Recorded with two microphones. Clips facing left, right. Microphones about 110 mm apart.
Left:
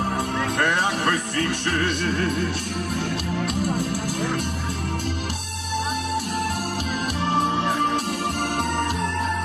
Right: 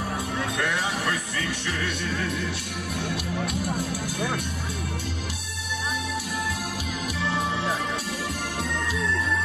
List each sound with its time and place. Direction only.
0.4 s music: 55° left (ahead or behind)
7.2 s music: 55° left (ahead or behind)
8.5 s organ: 60° left (ahead or behind)